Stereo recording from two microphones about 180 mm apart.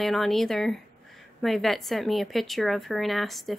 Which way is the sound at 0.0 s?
Centre (ahead or behind).